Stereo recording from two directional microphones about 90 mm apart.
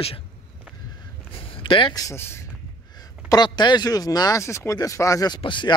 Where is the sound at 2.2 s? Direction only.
25° left (ahead or behind).